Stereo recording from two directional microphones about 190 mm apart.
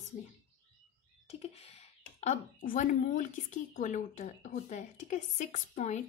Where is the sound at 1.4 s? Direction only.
30° left (ahead or behind).